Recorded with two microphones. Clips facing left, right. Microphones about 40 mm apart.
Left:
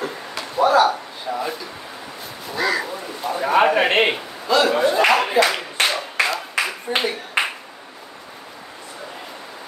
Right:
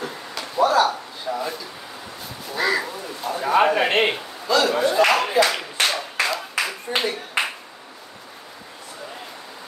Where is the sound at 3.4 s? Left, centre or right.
Centre.